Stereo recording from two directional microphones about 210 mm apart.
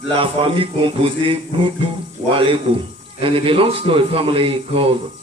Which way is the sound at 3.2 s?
25° right (ahead or behind).